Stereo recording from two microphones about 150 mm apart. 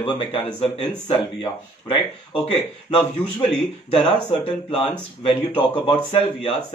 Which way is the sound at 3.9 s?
40° left (ahead or behind).